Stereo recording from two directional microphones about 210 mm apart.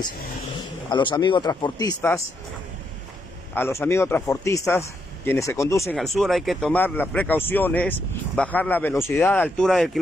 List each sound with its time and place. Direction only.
0.8 s a man's voice: 20° left (ahead or behind)
3.5 s a man's voice: 10° left (ahead or behind)
5.9 s a man's voice: centre (ahead or behind)